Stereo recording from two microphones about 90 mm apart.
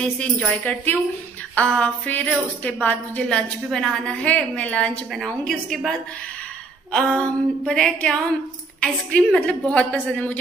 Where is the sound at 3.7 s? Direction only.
5° left (ahead or behind).